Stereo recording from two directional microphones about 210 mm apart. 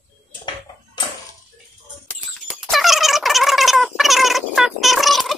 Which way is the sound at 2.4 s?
Centre (ahead or behind).